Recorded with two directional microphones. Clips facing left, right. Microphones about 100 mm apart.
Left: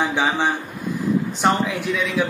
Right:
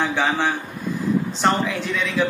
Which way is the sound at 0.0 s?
15° left (ahead or behind).